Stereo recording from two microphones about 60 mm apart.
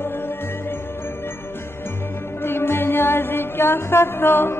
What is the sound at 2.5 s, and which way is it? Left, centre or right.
Music, left.